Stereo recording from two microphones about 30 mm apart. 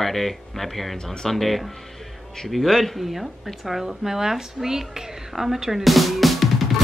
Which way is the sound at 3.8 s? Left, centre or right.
Centre.